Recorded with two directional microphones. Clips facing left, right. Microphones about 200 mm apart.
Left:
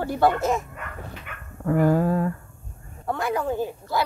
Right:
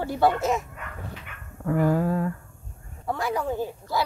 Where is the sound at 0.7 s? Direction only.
60° left (ahead or behind); by 2.3 s 40° left (ahead or behind).